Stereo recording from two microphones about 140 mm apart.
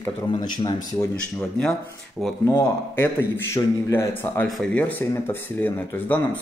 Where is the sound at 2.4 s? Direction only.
20° left (ahead or behind).